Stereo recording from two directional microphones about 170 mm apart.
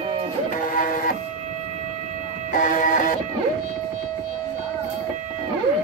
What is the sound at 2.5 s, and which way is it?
Music, 50° left (ahead or behind).